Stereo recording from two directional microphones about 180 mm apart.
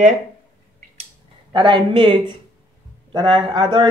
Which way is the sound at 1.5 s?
25° right (ahead or behind).